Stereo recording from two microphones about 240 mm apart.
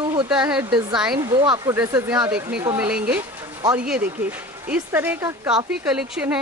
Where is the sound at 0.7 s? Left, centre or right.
Centre.